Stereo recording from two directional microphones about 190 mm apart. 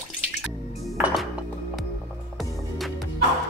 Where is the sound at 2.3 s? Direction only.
Centre (ahead or behind).